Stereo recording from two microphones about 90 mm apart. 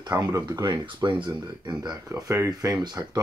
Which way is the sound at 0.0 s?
45° right (ahead or behind).